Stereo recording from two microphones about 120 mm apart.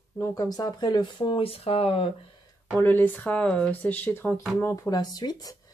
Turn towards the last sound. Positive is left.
turn(degrees=35)  # may be behind; listen again after turning